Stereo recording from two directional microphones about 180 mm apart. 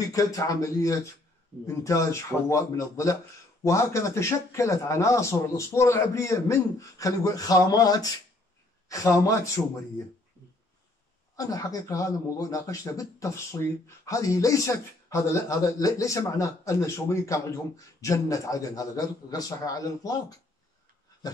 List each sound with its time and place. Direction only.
0.1 s a man's voice: 20° left (ahead or behind)
2.5 s a man's voice: 15° left (ahead or behind)
11.3 s a man's voice: 20° left (ahead or behind)